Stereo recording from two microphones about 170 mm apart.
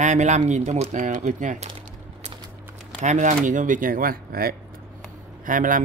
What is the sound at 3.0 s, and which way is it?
Speech, 45° right (ahead or behind).